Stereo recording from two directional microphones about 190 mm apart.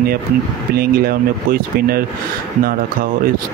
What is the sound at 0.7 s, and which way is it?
Speech, 50° right (ahead or behind).